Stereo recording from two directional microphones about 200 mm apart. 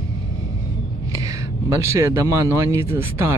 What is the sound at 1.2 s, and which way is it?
Speech, 15° right (ahead or behind).